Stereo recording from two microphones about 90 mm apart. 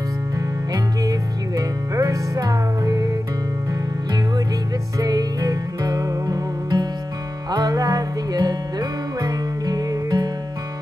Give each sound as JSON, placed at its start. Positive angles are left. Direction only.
{"t": 1.0, "sound": "music", "side_deg": -45}
{"t": 4.9, "sound": "music", "side_deg": -45}